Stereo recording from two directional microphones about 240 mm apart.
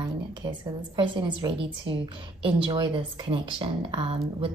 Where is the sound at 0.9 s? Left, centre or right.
Centre.